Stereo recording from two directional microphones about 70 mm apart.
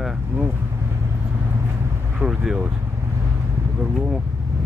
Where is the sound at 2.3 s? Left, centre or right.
Centre.